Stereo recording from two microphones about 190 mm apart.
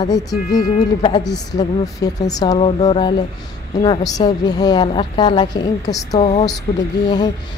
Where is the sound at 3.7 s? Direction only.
20° left (ahead or behind).